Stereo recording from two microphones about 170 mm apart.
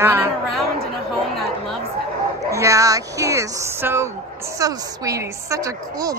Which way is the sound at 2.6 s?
20° right (ahead or behind).